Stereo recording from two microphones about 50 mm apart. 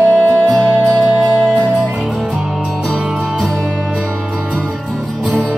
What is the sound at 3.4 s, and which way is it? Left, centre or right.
Music, centre.